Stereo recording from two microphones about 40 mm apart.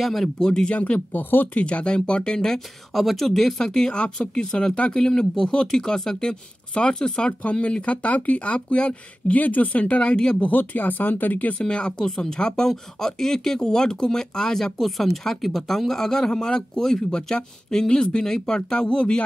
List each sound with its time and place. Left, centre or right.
0.0 s speech: centre
0.4 s speech: centre
0.7 s speech: left
1.1 s speech: left
1.5 s speech: left
4.9 s speech: centre
9.3 s speech: left
10.4 s speech: left
11.5 s speech: left